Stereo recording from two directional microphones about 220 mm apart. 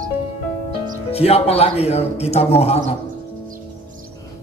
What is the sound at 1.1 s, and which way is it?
Speech, 25° left (ahead or behind).